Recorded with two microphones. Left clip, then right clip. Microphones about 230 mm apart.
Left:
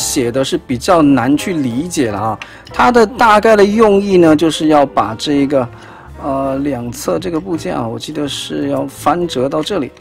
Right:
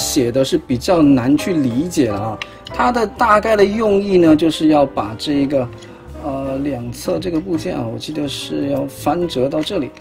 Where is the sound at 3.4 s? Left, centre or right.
Left.